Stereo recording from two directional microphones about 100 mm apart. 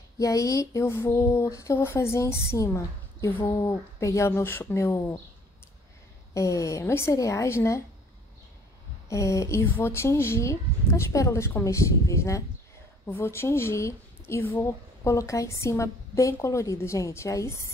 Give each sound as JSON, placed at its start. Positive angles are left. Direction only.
{"t": 0.2, "sound": "speech", "side_deg": 35}
{"t": 6.3, "sound": "a woman's voice", "side_deg": 30}
{"t": 9.1, "sound": "a woman's voice", "side_deg": 30}